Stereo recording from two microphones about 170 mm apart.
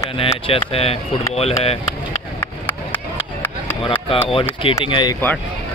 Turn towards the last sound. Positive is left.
turn(degrees=25)  # may be behind; listen again after turning